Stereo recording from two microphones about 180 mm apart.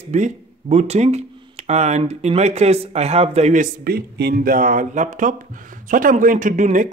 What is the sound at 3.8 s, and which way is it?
Speech, 60° right (ahead or behind).